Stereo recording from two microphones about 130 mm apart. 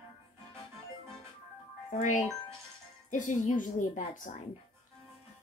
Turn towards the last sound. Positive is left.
turn(degrees=75)  # may be behind; listen again after turning